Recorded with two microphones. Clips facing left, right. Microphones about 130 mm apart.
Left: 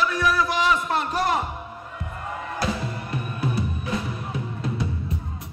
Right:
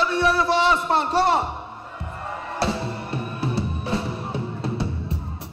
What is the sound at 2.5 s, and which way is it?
Music, 30° right (ahead or behind).